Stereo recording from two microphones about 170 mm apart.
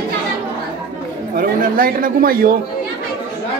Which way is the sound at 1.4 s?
55° right (ahead or behind).